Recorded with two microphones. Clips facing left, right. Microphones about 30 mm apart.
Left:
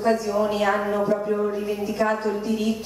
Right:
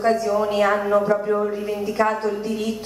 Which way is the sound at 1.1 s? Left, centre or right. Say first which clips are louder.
Right 2 dB; centre.